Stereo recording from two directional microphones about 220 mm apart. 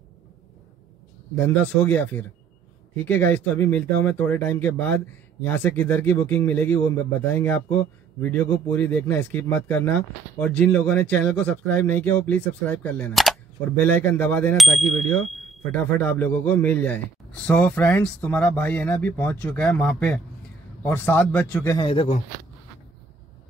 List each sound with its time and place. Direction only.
1.3 s speech: 10° left (ahead or behind)
21.7 s speech: 25° left (ahead or behind)